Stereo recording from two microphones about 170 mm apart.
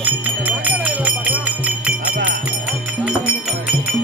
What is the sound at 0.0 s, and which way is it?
Music, 10° right (ahead or behind).